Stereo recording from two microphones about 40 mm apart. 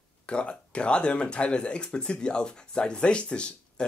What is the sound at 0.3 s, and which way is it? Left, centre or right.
Speech, left.